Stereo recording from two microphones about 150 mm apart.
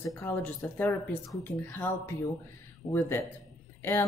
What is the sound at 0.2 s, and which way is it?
Speech, 15° left (ahead or behind).